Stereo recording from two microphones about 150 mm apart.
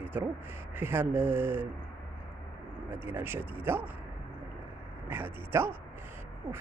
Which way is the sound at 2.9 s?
15° right (ahead or behind).